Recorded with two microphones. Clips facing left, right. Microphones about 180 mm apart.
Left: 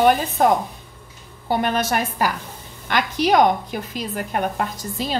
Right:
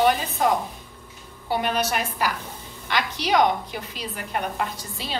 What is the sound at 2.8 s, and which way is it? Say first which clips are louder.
A woman's voice: left 6 dB; 50° left (ahead or behind).